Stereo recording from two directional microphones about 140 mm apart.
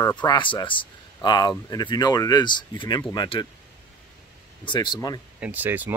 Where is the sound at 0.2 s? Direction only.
35° left (ahead or behind).